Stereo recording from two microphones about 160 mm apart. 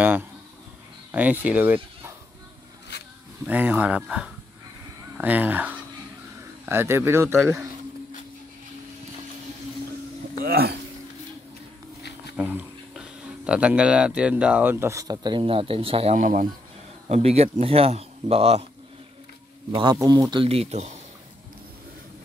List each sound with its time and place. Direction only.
1.1 s speech: 10° right (ahead or behind)
3.4 s speech: 10° right (ahead or behind)
10.5 s speech: 80° right
12.4 s speech: 10° right (ahead or behind); by 16.2 s 35° right (ahead or behind)
16.2 s speech: 55° right (ahead or behind)
17.1 s speech: 40° right (ahead or behind)
19.7 s speech: 30° right (ahead or behind)
20.4 s speech: 40° right (ahead or behind)